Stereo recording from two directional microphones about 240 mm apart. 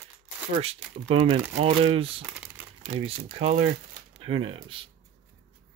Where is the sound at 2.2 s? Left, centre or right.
Centre.